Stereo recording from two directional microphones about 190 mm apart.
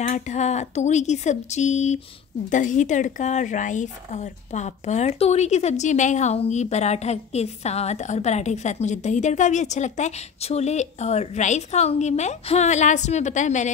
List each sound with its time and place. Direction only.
0.0 s speech: 40° left (ahead or behind)